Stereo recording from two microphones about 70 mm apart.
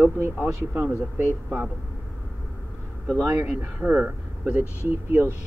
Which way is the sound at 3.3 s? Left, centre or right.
Right.